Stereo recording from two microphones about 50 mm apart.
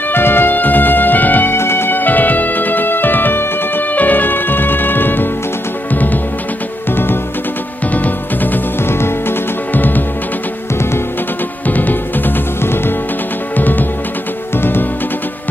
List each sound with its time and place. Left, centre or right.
0.1 s music: left
1.6 s music: left
7.9 s music: left
8.8 s music: left
9.8 s music: left
11.6 s music: left
13.6 s music: left